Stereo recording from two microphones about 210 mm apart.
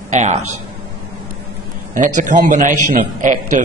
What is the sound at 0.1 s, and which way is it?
Speech, 35° right (ahead or behind).